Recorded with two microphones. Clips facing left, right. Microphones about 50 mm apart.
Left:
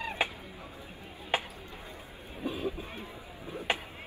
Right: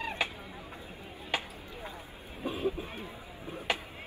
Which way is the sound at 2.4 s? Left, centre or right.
Right.